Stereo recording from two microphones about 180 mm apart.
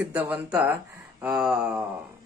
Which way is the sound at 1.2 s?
5° right (ahead or behind).